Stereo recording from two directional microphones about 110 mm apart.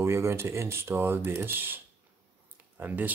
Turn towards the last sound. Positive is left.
turn(degrees=-15)  # may be behind; listen again after turning